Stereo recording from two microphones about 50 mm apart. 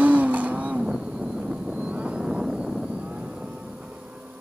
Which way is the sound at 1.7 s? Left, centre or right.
Right.